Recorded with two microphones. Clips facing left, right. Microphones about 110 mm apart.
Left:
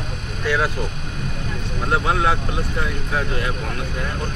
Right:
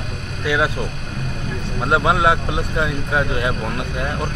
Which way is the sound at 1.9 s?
20° right (ahead or behind).